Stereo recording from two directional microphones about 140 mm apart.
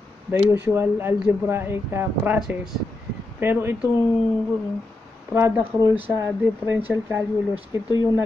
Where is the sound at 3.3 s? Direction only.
15° right (ahead or behind).